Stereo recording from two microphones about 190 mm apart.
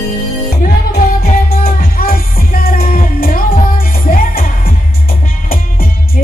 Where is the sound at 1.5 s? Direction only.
50° left (ahead or behind).